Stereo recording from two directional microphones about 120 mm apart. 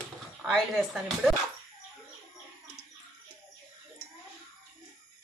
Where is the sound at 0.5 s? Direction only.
5° right (ahead or behind).